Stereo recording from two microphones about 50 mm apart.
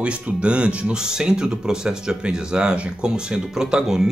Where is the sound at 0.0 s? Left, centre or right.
Right.